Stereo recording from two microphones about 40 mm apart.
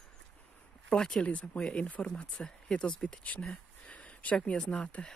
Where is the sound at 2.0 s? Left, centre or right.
Left.